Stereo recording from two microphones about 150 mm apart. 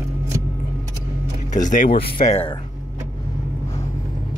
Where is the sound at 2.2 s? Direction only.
45° left (ahead or behind).